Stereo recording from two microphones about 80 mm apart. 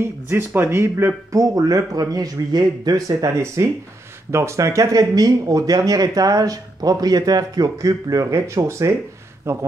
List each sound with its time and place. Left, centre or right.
0.0 s speech: right
1.4 s speech: right